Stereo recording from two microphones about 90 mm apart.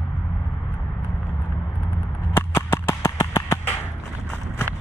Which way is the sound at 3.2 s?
45° left (ahead or behind).